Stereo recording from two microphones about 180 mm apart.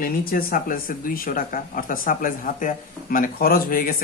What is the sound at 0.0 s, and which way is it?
Speech, 55° left (ahead or behind).